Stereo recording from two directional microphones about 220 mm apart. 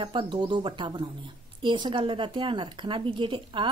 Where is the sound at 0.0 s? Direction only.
20° right (ahead or behind).